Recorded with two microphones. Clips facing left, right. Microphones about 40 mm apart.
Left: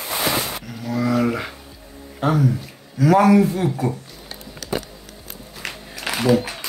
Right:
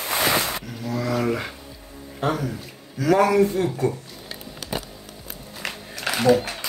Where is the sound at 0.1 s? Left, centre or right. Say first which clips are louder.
Right 1 dB; right.